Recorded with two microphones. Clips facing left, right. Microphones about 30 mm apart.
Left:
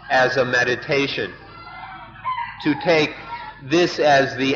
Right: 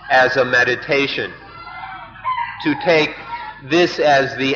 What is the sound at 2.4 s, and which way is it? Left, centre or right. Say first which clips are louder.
A man's voice: right 1 dB; centre.